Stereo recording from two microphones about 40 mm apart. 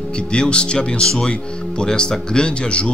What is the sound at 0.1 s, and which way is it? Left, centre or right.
Speech, left.